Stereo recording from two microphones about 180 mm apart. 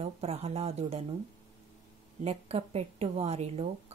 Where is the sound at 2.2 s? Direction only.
35° right (ahead or behind).